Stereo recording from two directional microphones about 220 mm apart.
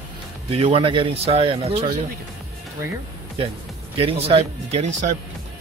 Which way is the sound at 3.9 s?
25° right (ahead or behind).